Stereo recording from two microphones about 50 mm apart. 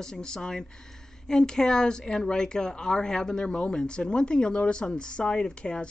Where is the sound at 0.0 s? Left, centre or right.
Centre.